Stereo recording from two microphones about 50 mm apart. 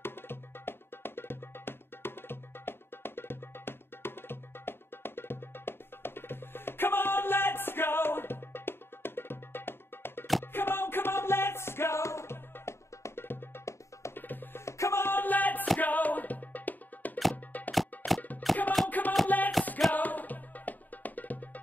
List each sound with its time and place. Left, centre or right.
0.0 s music: left
12.6 s music: left
14.6 s music: left
15.0 s music: left
17.7 s music: centre
18.9 s music: left